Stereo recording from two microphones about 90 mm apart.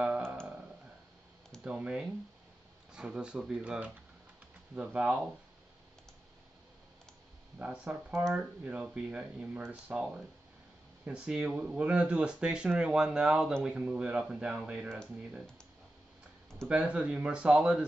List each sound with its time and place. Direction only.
1.6 s speech: 10° right (ahead or behind)
7.5 s speech: 10° right (ahead or behind)
8.1 s speech: 30° right (ahead or behind)
8.6 s speech: 15° right (ahead or behind)
11.1 s speech: 10° right (ahead or behind)
16.6 s speech: 10° right (ahead or behind)